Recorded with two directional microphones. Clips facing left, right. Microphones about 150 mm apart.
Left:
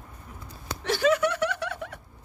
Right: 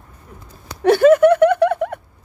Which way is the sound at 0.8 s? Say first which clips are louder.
Right 13 dB; 55° right (ahead or behind).